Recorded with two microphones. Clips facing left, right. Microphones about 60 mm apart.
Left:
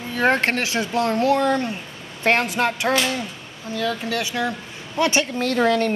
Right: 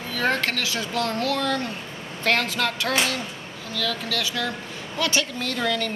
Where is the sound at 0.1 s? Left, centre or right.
Left.